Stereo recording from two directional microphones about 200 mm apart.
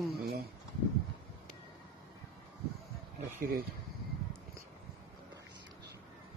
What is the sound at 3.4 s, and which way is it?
Speech, 50° right (ahead or behind).